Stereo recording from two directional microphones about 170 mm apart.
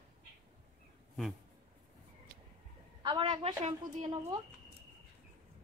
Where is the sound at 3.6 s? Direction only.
40° right (ahead or behind).